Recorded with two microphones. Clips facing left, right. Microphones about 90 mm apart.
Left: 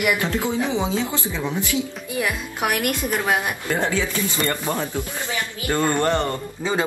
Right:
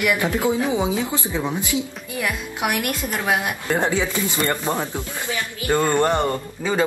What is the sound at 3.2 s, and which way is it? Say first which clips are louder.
Speech: even; 15° right (ahead or behind).